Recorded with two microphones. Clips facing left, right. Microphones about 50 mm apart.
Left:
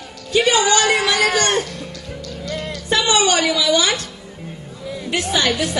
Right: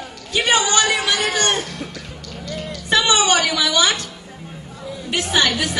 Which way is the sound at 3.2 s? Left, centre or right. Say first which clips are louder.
Left 1 dB; right.